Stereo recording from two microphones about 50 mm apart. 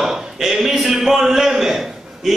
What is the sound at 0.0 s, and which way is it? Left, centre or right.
A man's voice, centre.